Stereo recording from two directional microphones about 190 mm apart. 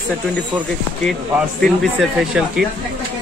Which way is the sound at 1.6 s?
Centre (ahead or behind).